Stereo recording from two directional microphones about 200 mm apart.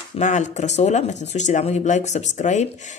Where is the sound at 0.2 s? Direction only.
35° left (ahead or behind).